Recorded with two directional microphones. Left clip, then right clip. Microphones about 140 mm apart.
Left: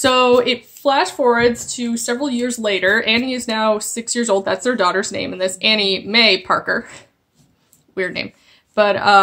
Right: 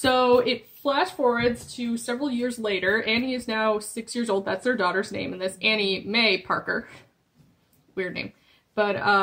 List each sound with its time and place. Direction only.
0.0 s speech: 20° left (ahead or behind); by 9.2 s 35° left (ahead or behind)